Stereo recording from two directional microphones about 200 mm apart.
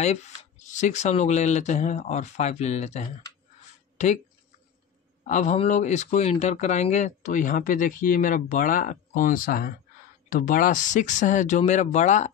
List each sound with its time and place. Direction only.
0.0 s speech: 35° left (ahead or behind)
5.2 s speech: 35° left (ahead or behind)